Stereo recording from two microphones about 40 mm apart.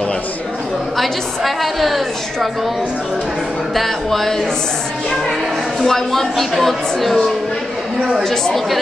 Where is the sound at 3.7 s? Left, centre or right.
Centre.